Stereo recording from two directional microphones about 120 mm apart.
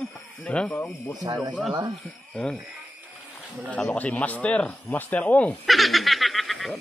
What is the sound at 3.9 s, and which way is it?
Speech, 10° left (ahead or behind).